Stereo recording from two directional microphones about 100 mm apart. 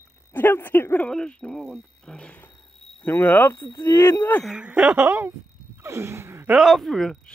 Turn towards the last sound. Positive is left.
turn(degrees=5)  # may be behind; listen again after turning